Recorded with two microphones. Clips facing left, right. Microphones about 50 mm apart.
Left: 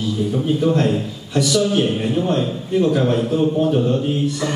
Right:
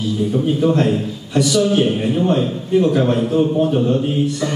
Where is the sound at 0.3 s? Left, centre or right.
Centre.